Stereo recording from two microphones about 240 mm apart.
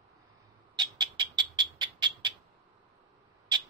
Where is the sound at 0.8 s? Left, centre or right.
Centre.